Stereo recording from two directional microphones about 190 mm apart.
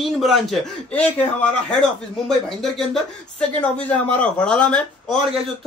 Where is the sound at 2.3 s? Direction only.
Centre (ahead or behind).